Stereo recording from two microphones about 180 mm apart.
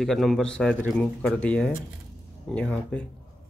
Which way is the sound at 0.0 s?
Centre (ahead or behind).